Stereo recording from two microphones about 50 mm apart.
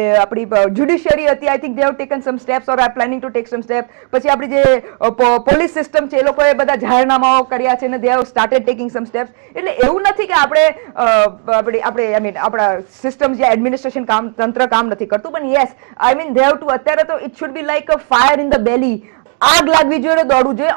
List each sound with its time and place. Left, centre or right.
0.0 s a woman's voice: centre